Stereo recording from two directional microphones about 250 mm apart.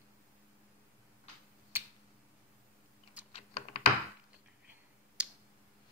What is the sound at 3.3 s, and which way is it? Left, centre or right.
Computer keyboard, left.